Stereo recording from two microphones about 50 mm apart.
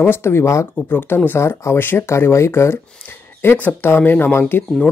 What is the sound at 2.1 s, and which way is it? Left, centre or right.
Speech, left.